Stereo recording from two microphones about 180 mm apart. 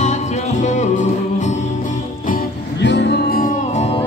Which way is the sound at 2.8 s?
75° left (ahead or behind).